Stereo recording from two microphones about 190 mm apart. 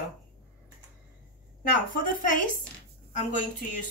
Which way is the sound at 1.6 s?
45° left (ahead or behind).